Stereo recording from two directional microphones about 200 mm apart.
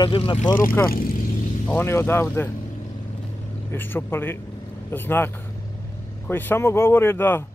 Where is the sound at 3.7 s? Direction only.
10° left (ahead or behind).